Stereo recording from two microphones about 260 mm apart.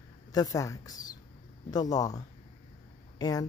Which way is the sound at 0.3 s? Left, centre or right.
Centre.